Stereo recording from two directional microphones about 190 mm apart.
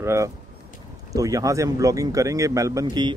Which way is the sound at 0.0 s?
15° right (ahead or behind).